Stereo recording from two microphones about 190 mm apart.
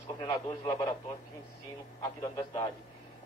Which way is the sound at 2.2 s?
25° left (ahead or behind).